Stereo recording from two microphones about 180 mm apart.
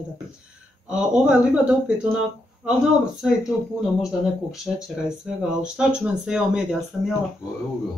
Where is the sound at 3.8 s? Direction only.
5° right (ahead or behind).